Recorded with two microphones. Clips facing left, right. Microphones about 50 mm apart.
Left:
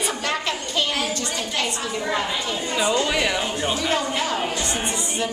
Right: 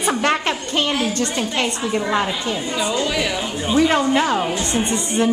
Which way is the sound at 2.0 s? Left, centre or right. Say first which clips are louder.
Right 5 dB; right.